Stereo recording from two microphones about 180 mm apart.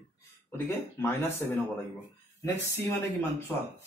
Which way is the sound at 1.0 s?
15° left (ahead or behind).